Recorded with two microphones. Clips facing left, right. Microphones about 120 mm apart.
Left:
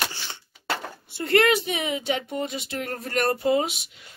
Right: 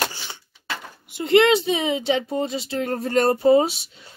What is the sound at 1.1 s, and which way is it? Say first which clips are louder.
Speech: right 4 dB; 25° right (ahead or behind).